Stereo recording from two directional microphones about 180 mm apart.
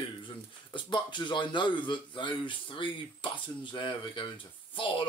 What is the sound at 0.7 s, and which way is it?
Speech, 25° left (ahead or behind).